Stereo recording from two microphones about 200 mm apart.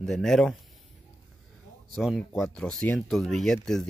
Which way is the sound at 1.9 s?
Centre (ahead or behind).